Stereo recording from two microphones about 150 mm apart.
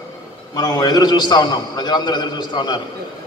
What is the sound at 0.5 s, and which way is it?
A man's voice, 25° left (ahead or behind).